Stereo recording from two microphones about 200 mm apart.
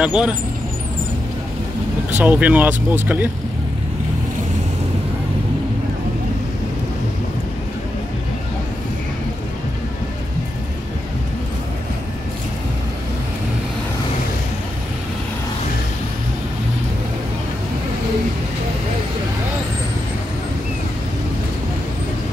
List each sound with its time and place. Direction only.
0.0 s speech: 5° right (ahead or behind)
2.1 s speech: 10° right (ahead or behind)